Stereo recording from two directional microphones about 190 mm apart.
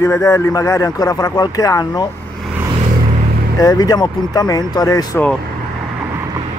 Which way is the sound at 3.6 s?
20° left (ahead or behind).